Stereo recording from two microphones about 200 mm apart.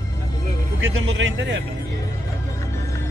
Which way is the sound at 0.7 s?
75° right (ahead or behind).